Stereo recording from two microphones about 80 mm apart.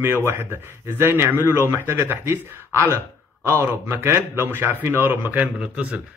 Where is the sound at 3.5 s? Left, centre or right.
Right.